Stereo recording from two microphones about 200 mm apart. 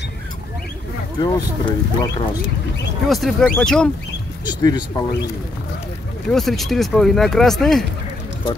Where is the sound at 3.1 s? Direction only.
Centre (ahead or behind).